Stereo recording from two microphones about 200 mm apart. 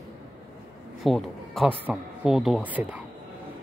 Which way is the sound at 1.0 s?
Centre (ahead or behind).